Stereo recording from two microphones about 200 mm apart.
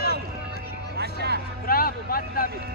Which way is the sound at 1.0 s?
55° right (ahead or behind).